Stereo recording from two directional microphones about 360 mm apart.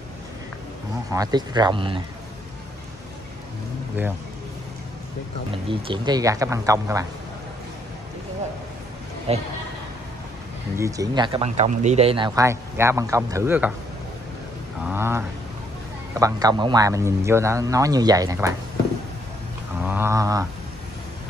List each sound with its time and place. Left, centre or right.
1.1 s speech: centre
4.0 s speech: centre
5.7 s speech: centre
9.3 s speech: centre
10.8 s speech: centre
14.9 s speech: centre
19.9 s a sound: centre